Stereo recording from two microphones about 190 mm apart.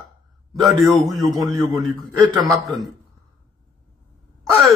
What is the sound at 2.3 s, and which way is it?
Speech, 15° right (ahead or behind).